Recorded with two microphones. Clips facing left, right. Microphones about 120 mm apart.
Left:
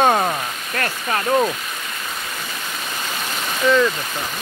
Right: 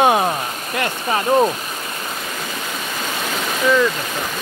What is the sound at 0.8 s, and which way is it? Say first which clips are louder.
Speech: right 3 dB; 20° right (ahead or behind).